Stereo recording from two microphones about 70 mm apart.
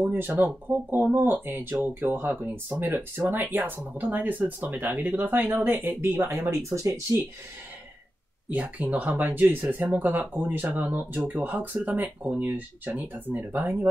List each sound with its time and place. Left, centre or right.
0.0 s speech: right
8.5 s speech: right